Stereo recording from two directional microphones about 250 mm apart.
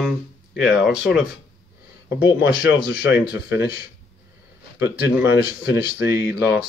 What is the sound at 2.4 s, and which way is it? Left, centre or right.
Speech, left.